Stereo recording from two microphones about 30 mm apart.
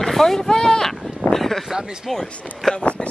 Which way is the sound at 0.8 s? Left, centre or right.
Centre.